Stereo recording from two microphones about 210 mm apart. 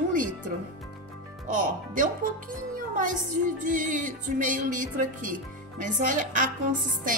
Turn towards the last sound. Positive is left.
turn(degrees=-40)  # may be behind; listen again after turning